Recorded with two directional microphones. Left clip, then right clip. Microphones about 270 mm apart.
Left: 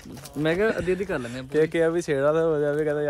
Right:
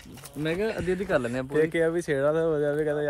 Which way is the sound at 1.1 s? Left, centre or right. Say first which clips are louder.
Right 5 dB; right.